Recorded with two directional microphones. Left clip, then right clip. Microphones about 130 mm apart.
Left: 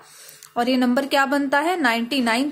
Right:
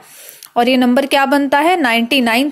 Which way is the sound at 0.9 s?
40° right (ahead or behind).